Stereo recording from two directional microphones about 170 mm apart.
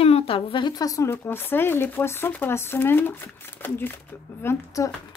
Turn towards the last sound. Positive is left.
turn(degrees=15)  # may be behind; listen again after turning